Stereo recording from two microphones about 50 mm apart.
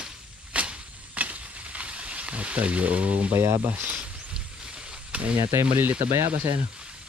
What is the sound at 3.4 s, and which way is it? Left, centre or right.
Speech, right.